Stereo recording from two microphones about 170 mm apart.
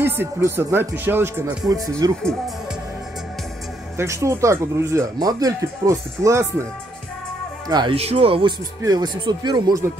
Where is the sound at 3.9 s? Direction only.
15° right (ahead or behind).